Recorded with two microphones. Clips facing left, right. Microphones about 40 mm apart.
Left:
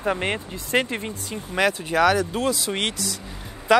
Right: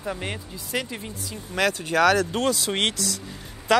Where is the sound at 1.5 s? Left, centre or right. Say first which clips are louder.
Left 1 dB; centre.